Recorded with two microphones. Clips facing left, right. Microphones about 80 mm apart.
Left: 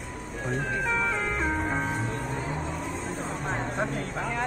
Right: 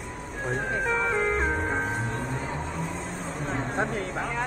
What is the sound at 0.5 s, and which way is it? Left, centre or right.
Music, right.